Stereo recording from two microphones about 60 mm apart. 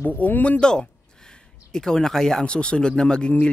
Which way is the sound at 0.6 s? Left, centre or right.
Centre.